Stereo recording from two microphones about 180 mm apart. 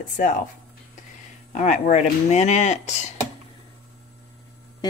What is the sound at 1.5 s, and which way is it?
A woman's voice, 40° left (ahead or behind).